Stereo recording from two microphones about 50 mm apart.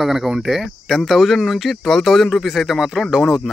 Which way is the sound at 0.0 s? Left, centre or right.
Centre.